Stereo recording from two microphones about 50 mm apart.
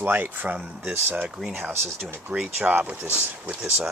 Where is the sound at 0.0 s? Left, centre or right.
Right.